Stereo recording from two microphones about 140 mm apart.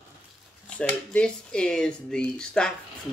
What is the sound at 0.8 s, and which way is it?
Speech, 10° left (ahead or behind).